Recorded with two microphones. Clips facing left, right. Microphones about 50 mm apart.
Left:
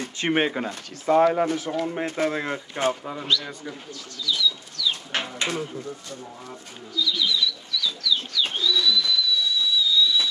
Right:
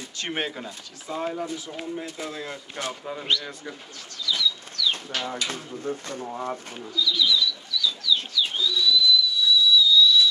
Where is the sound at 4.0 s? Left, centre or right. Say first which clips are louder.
Left 1 dB; right.